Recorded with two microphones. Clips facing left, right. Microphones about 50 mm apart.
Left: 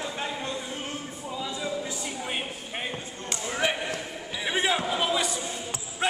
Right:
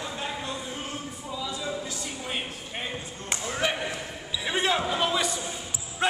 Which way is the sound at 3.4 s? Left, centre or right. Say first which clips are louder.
Left 1 dB; centre.